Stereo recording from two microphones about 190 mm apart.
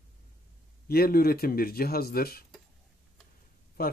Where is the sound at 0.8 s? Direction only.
55° left (ahead or behind).